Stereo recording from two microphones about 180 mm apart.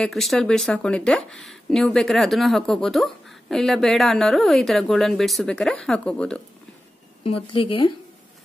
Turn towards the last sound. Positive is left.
turn(degrees=30)  # may be behind; listen again after turning